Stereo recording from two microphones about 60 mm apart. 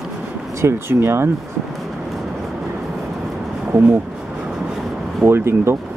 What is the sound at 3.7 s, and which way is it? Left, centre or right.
Speech, right.